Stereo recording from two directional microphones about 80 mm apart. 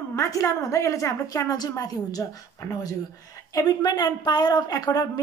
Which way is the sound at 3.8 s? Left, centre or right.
Left.